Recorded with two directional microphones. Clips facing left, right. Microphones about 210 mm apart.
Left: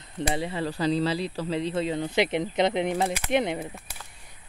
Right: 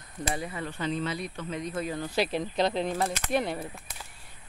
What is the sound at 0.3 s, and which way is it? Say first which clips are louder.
Speech: left 5 dB; 25° left (ahead or behind).